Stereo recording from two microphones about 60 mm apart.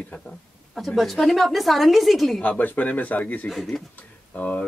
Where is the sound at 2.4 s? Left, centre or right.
Left.